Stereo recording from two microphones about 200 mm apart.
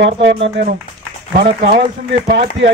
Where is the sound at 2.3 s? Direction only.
55° right (ahead or behind).